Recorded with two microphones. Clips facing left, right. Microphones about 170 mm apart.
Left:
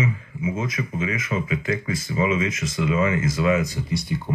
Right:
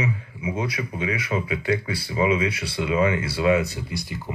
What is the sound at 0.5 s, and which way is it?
Speech, 35° right (ahead or behind).